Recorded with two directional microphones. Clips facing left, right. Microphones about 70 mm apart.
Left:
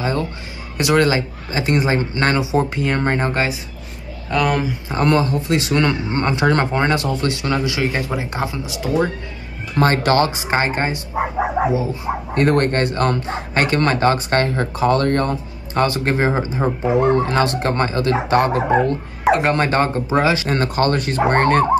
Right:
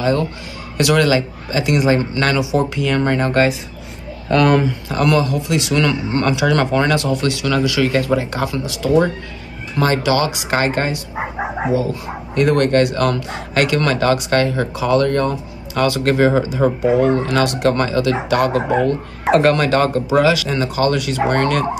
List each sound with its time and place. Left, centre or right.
0.0 s speech: left
4.3 s speech: centre
4.8 s speech: left
9.8 s speech: left
12.4 s speech: left
20.4 s speech: left